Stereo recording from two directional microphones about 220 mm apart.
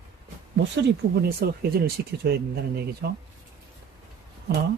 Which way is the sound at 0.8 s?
45° right (ahead or behind).